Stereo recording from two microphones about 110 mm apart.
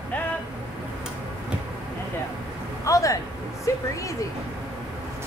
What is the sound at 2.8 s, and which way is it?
Speech, 30° left (ahead or behind).